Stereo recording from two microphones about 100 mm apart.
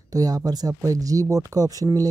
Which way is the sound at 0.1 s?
40° right (ahead or behind).